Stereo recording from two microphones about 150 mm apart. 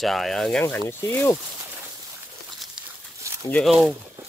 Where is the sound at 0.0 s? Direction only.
Centre (ahead or behind).